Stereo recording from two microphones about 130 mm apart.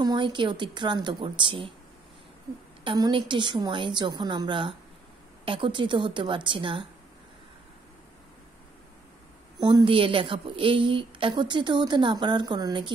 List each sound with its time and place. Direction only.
0.0 s a woman's voice: 35° right (ahead or behind)
2.8 s a woman's voice: 40° right (ahead or behind)
9.6 s a woman's voice: 30° right (ahead or behind)